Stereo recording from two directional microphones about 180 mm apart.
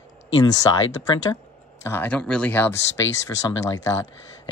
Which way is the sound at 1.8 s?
10° left (ahead or behind).